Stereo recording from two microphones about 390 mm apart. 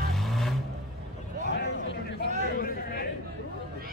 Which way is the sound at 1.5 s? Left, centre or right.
Left.